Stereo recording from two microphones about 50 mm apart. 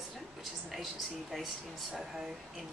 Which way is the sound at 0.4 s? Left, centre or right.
Centre.